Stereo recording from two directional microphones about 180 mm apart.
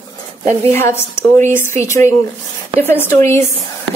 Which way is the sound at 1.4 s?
15° left (ahead or behind).